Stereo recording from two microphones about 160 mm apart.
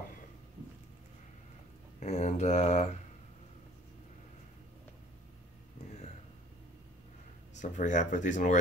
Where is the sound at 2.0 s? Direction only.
45° left (ahead or behind).